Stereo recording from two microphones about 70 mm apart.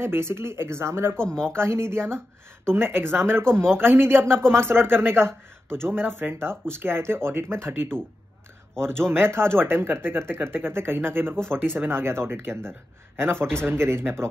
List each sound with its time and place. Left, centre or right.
0.0 s speech: right
1.2 s speech: centre
1.5 s speech: right